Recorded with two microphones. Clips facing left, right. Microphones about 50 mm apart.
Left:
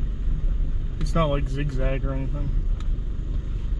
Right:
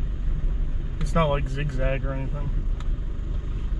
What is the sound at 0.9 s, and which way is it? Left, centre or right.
Speech, centre.